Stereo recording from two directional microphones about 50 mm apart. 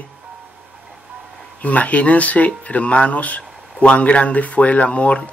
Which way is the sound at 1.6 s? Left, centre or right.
Left.